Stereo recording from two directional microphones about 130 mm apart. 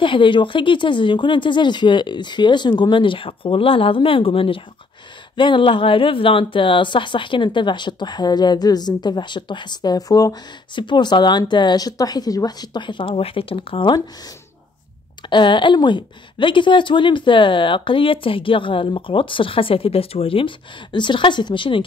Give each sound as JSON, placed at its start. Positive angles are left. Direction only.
{"t": 0.0, "sound": "speech", "side_deg": 40}